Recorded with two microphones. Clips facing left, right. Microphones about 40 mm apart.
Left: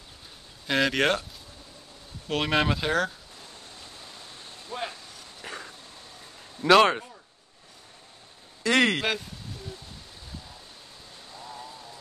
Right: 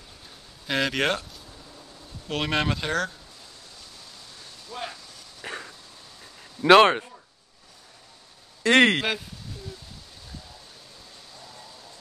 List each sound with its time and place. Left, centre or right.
0.7 s speech: centre
2.2 s speech: centre
4.0 s a sound: left
5.4 s a sound: centre
6.6 s speech: right
8.6 s speech: right